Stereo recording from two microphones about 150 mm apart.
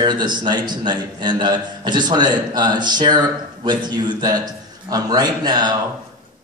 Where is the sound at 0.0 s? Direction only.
30° right (ahead or behind).